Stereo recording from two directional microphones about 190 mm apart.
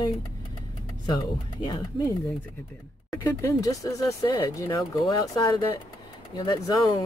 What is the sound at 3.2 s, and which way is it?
Speech, 15° left (ahead or behind).